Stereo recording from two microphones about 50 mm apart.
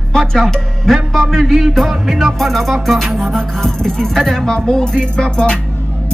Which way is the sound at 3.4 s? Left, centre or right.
Centre.